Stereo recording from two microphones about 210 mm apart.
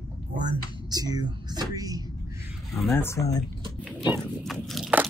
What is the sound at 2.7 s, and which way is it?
Speech, centre (ahead or behind).